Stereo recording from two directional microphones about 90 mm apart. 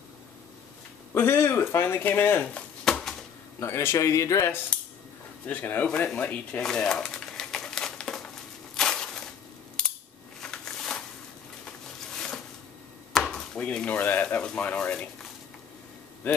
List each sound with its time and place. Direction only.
1.1 s speech: 30° left (ahead or behind)
2.8 s a sound: 5° left (ahead or behind)
3.5 s speech: 30° left (ahead or behind)
5.5 s speech: 20° left (ahead or behind)
5.9 s speech: 5° left (ahead or behind)
6.1 s speech: 20° left (ahead or behind)
6.6 s crumpling: 5° left (ahead or behind)
8.7 s a sound: 5° left (ahead or behind)
10.4 s a sound: 5° left (ahead or behind)
12.1 s a sound: 5° left (ahead or behind)
13.1 s speech: 5° left (ahead or behind)
16.2 s a man's voice: 20° left (ahead or behind)